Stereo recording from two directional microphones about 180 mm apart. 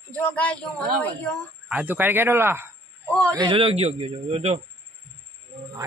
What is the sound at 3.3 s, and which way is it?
Speech, 30° right (ahead or behind).